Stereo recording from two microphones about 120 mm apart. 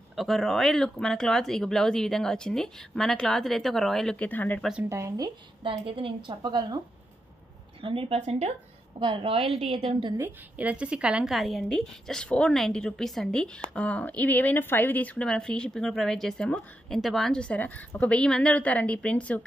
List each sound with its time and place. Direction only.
0.1 s speech: centre (ahead or behind)
4.8 s speech: 25° right (ahead or behind)
5.6 s a woman's voice: 45° right (ahead or behind)
7.8 s a woman's voice: 50° right (ahead or behind)
9.0 s a woman's voice: 45° right (ahead or behind)
10.1 s a woman's voice: 15° right (ahead or behind); by 19.4 s 10° left (ahead or behind)